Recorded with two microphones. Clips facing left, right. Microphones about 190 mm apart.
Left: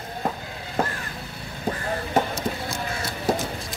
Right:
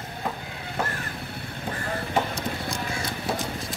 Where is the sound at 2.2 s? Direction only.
40° left (ahead or behind).